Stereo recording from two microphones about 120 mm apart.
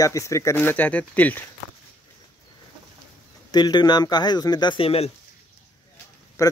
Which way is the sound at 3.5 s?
35° left (ahead or behind).